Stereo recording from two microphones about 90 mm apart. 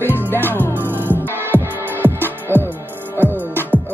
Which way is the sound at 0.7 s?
25° right (ahead or behind).